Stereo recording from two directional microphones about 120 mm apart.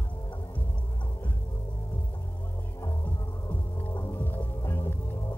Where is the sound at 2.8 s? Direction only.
15° left (ahead or behind).